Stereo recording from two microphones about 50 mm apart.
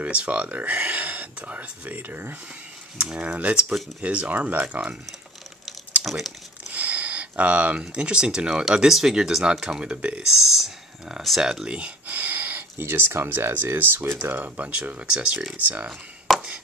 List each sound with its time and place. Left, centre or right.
0.0 s speech: right
3.2 s speech: right
4.3 s speech: right
6.0 s speech: centre
6.7 s a sound: right
7.8 s speech: centre
10.5 s speech: centre
11.6 s a sound: right
12.7 s speech: right; by 15.3 s centre
15.5 s speech: right
16.3 s a sound: centre